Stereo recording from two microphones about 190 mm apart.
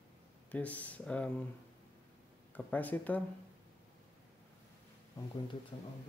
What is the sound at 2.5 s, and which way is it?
Speech, 10° left (ahead or behind).